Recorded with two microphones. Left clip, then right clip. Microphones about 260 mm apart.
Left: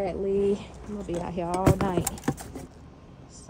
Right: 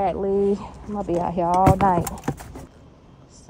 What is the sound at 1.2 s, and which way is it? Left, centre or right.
A woman's voice, centre.